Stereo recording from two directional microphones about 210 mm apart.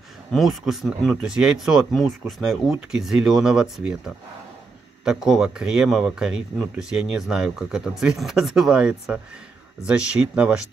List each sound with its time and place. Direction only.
0.3 s speech: centre (ahead or behind)